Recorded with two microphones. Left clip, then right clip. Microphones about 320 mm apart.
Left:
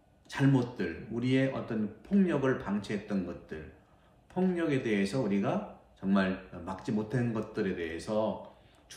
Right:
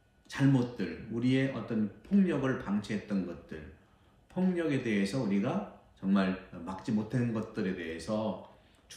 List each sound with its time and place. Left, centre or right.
0.3 s speech: centre